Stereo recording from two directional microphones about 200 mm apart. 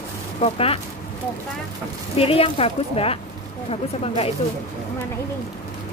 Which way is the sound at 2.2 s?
30° left (ahead or behind).